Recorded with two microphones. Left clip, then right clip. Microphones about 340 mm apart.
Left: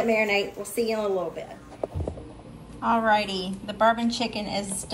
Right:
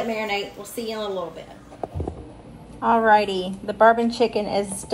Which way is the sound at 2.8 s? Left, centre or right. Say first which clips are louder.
Right 5 dB; centre.